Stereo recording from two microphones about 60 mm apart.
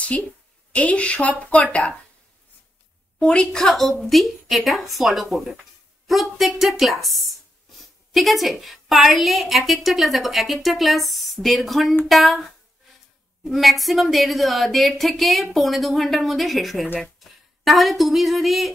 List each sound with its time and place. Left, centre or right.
0.7 s a woman's voice: left
3.2 s a woman's voice: centre